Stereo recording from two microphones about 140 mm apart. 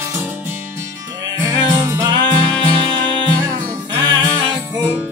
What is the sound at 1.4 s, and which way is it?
Music, 20° right (ahead or behind).